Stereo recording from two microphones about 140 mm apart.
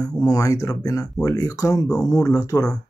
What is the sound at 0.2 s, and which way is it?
Speech, 25° left (ahead or behind).